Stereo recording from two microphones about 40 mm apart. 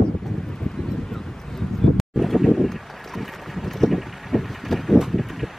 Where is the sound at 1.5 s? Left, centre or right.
Centre.